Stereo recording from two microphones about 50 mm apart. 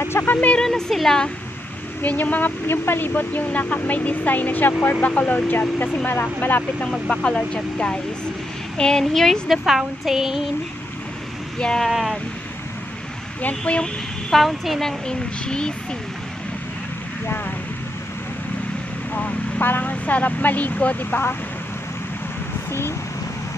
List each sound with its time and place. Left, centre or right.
0.1 s speech: left
0.7 s speech: centre
2.0 s speech: left
2.7 s speech: left
6.8 s speech: centre
9.7 s speech: centre
11.5 s speech: centre
11.8 s speech: centre
14.3 s speech: centre
14.8 s speech: centre
19.1 s speech: left
22.7 s speech: left